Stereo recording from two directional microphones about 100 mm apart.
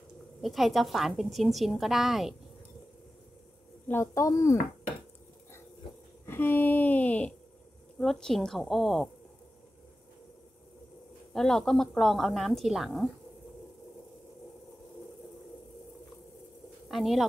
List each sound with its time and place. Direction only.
0.4 s a woman's voice: centre (ahead or behind)
3.9 s speech: 30° left (ahead or behind)
6.2 s a woman's voice: 20° left (ahead or behind); by 9.1 s centre (ahead or behind)
11.3 s a woman's voice: 5° left (ahead or behind)
16.9 s a woman's voice: centre (ahead or behind)